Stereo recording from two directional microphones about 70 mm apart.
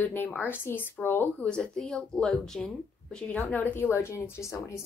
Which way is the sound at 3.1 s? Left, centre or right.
Centre.